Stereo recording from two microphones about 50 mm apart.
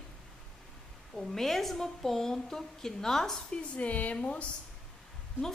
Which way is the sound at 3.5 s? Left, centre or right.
Left.